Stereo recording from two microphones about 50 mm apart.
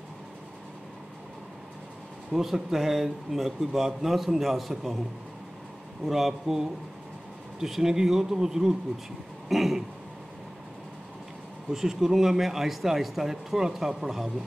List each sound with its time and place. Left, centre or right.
2.3 s speech: centre
6.0 s speech: centre
11.7 s speech: centre